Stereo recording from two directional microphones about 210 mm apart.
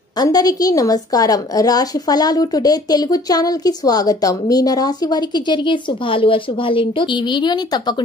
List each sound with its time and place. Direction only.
0.2 s a woman's voice: 15° left (ahead or behind)